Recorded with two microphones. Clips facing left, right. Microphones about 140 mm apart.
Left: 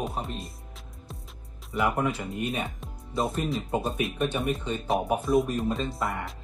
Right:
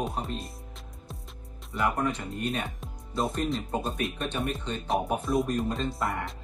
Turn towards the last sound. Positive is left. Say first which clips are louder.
# even
turn(degrees=0)  # may be behind; listen again after turning